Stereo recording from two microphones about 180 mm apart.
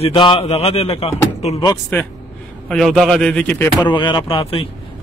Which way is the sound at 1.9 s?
10° left (ahead or behind).